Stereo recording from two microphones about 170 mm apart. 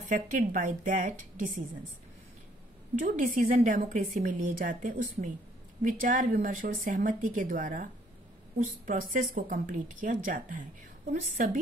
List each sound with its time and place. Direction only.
0.1 s a woman's voice: 50° right (ahead or behind)
3.0 s a woman's voice: 50° right (ahead or behind)